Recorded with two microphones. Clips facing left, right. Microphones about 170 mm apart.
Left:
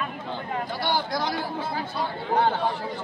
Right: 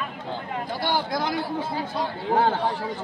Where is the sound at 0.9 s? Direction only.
50° right (ahead or behind).